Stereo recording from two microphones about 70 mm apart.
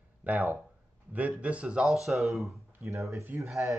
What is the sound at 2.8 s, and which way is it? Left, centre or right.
Speech, right.